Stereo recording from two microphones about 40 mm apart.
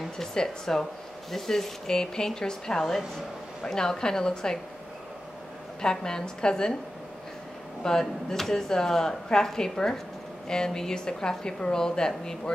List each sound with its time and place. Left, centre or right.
0.2 s speech: centre
5.8 s speech: centre
7.8 s speech: centre